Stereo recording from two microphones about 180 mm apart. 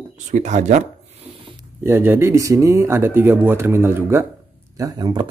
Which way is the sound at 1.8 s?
15° right (ahead or behind).